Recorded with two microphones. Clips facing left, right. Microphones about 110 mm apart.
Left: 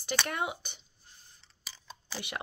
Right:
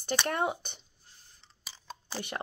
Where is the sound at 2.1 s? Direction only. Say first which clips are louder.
Right 2 dB; 40° right (ahead or behind).